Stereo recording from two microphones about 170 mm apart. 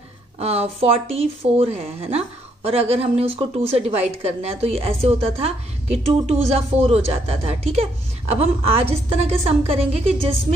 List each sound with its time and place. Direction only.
0.4 s speech: 35° right (ahead or behind)